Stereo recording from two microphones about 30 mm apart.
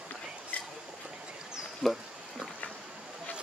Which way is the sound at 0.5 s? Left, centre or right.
Left.